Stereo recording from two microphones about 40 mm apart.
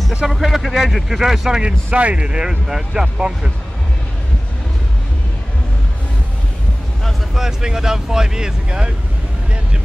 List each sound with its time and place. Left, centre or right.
0.4 s speech: centre
1.6 s speech: right
7.3 s speech: centre
8.6 s speech: right